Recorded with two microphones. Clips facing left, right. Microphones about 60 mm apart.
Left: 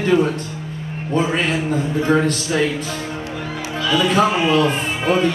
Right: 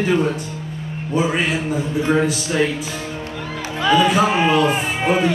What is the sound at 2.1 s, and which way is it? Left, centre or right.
Speech, centre.